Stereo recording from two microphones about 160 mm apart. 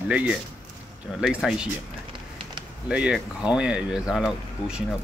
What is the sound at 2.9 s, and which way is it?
Speech, 5° right (ahead or behind).